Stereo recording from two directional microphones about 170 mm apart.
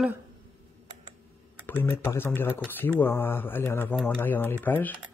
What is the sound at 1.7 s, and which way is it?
Speech, 10° left (ahead or behind).